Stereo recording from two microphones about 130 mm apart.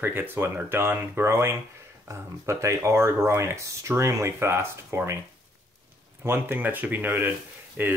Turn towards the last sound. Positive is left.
turn(degrees=-15)  # may be behind; listen again after turning